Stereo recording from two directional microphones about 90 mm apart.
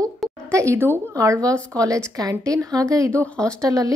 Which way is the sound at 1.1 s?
40° right (ahead or behind).